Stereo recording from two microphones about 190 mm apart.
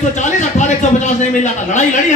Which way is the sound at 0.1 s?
40° left (ahead or behind).